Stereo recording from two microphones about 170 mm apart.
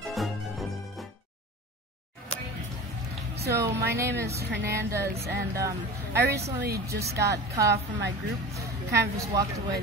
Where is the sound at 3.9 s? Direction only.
15° right (ahead or behind).